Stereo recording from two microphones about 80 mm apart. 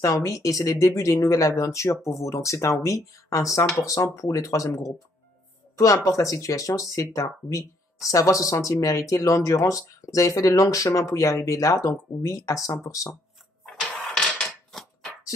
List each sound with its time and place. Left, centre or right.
0.0 s speech: left
6.0 s speech: left
13.7 s printer: centre
14.7 s a sound: centre